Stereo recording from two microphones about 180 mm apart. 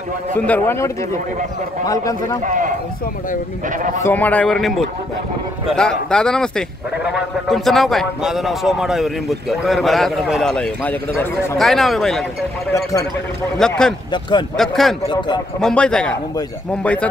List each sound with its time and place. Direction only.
0.3 s a man's voice: 10° left (ahead or behind)
2.4 s speech: 45° right (ahead or behind)
4.0 s a man's voice: 10° left (ahead or behind)
13.6 s a man's voice: 5° left (ahead or behind)
15.0 s speech: 25° left (ahead or behind)
15.6 s a man's voice: 5° left (ahead or behind)